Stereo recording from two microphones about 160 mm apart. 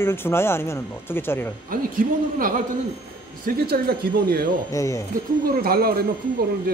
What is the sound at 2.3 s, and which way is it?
A man's voice, 60° right (ahead or behind).